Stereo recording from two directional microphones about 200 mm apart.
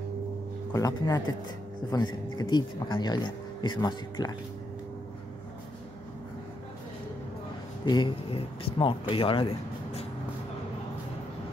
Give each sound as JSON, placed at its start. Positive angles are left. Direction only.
{"t": 0.7, "sound": "a man's voice", "side_deg": 15}
{"t": 7.8, "sound": "speech", "side_deg": 20}